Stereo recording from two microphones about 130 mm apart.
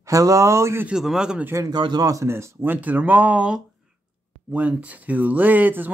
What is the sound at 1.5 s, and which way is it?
Speech, 25° right (ahead or behind).